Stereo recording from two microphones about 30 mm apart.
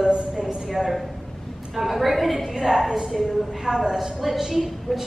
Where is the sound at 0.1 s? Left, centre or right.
Right.